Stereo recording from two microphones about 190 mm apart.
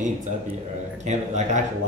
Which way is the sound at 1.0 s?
40° right (ahead or behind).